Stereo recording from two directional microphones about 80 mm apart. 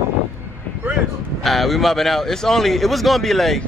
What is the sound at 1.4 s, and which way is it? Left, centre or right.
A man's voice, centre.